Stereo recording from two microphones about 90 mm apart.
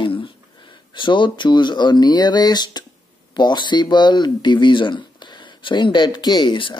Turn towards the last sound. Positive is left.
turn(degrees=65)  # may be behind; listen again after turning